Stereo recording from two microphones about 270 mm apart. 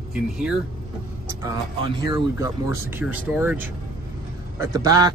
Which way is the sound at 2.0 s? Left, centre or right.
Centre.